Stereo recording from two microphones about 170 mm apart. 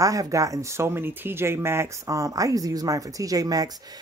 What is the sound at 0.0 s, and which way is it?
Speech, 20° right (ahead or behind).